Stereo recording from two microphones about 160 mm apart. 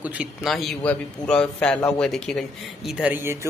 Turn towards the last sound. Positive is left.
turn(degrees=-10)  # may be behind; listen again after turning